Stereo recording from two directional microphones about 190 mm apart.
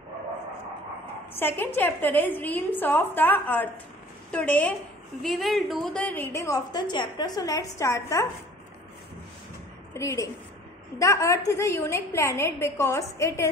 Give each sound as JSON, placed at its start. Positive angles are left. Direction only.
{"t": 1.3, "sound": "a woman's voice", "side_deg": 10}
{"t": 9.9, "sound": "a woman's voice", "side_deg": 15}